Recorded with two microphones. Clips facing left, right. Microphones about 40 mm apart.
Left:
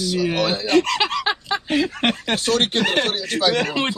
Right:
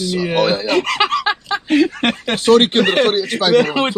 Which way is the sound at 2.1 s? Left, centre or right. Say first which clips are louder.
Right 8 dB; right.